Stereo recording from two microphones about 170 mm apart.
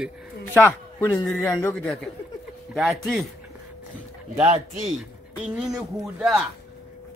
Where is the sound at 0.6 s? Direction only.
15° left (ahead or behind).